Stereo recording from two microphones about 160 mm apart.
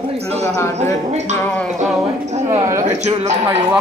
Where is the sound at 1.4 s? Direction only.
10° left (ahead or behind).